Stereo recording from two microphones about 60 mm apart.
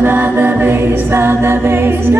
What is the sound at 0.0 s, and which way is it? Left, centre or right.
A capella, right.